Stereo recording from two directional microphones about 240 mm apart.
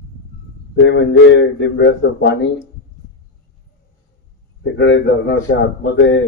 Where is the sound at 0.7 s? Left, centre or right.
Left.